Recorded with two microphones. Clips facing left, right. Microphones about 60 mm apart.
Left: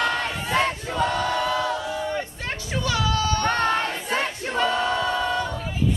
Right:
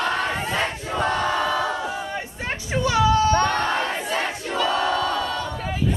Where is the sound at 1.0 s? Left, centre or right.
Right.